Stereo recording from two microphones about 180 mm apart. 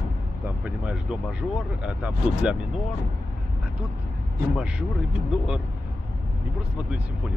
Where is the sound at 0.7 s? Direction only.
10° right (ahead or behind).